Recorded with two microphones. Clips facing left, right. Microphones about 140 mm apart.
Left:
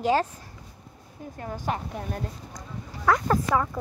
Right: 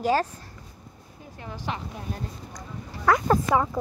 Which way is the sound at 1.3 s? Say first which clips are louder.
Left 3 dB; 45° left (ahead or behind).